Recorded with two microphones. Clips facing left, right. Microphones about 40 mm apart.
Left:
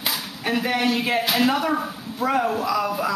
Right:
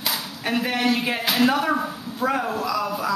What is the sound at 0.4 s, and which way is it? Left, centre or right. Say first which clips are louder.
A man's voice: left 1 dB; centre.